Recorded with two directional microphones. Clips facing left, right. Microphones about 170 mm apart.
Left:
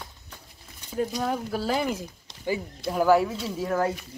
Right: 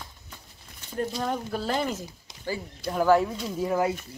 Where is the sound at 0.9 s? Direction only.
5° left (ahead or behind).